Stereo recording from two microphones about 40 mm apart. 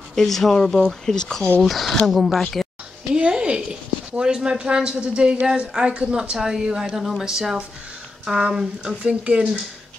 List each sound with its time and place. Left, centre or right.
0.1 s speech: centre
1.0 s speech: centre
1.6 s speech: centre
3.2 s speech: right
7.0 s speech: centre
9.0 s speech: right